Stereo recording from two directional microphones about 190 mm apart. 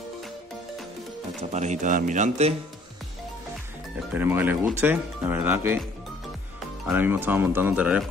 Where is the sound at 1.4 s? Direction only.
35° right (ahead or behind).